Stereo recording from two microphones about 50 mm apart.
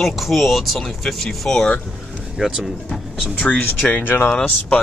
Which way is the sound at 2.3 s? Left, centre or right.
Centre.